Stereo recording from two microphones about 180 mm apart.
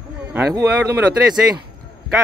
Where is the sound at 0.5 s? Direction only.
15° right (ahead or behind).